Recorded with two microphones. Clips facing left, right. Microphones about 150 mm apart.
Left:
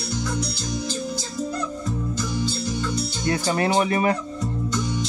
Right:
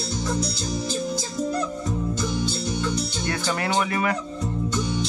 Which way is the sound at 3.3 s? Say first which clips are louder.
Left 5 dB; 30° left (ahead or behind).